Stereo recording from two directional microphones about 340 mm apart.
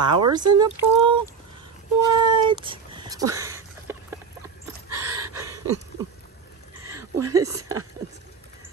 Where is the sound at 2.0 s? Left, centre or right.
Centre.